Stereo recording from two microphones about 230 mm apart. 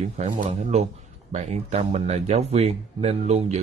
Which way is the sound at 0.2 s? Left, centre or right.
Right.